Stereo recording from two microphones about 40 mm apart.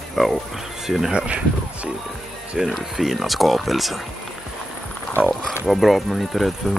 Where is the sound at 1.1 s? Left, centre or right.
Right.